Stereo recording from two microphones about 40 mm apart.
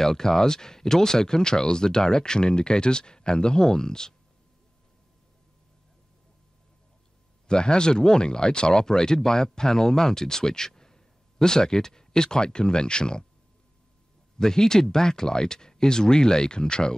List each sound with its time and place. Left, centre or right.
0.0 s speech: centre
7.4 s speech: left
14.4 s speech: centre